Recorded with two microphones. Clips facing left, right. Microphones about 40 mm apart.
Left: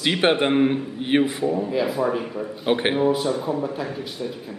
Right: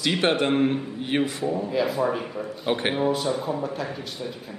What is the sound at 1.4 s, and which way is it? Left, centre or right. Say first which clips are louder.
A man's voice: left 2 dB; centre.